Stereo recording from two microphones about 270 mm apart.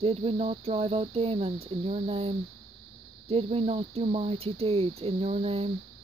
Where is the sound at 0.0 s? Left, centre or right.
Right.